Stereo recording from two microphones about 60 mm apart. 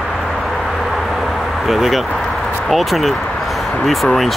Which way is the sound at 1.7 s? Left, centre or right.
Centre.